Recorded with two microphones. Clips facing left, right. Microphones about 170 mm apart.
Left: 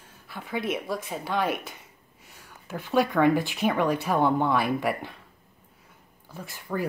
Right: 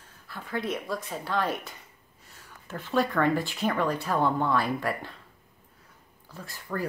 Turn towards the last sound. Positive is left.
turn(degrees=15)  # may be behind; listen again after turning